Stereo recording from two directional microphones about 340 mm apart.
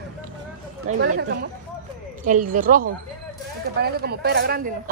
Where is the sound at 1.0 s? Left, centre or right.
Right.